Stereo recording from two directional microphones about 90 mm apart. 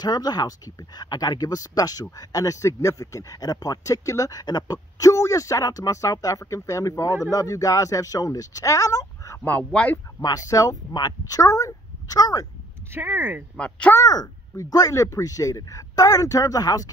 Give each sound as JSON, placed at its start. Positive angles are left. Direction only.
{"t": 0.0, "sound": "speech", "side_deg": 50}
{"t": 9.4, "sound": "speech", "side_deg": 20}
{"t": 10.2, "sound": "speech", "side_deg": 40}
{"t": 12.9, "sound": "speech", "side_deg": -25}
{"t": 13.6, "sound": "speech", "side_deg": 15}
{"t": 13.9, "sound": "speech", "side_deg": 45}